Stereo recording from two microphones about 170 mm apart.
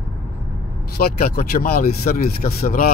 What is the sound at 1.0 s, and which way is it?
Speech, 60° left (ahead or behind).